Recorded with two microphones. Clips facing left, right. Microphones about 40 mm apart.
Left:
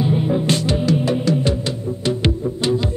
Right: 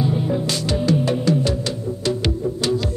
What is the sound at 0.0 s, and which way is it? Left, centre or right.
Music, left.